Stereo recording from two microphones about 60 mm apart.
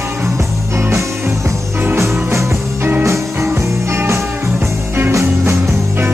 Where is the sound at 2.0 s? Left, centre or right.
Right.